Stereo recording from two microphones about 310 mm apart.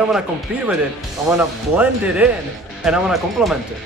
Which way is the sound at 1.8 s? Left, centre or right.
Centre.